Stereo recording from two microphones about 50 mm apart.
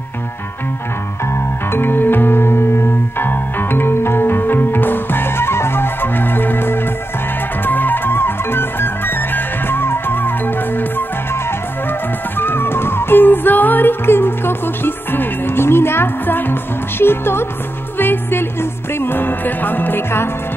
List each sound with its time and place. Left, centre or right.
1.7 s music: left
12.4 s music: left